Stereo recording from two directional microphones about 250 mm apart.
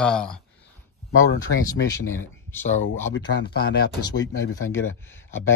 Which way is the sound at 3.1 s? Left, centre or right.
Left.